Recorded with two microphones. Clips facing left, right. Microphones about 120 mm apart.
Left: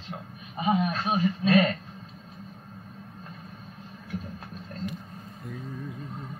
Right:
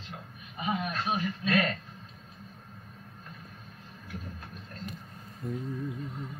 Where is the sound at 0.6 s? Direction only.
30° left (ahead or behind).